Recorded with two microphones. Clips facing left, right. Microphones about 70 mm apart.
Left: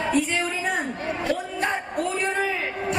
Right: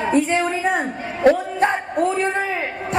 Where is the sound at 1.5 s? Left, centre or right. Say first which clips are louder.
Right 6 dB; right.